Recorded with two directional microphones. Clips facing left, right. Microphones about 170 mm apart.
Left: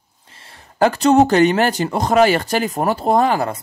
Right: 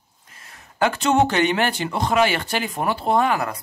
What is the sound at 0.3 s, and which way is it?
Speech, 30° left (ahead or behind).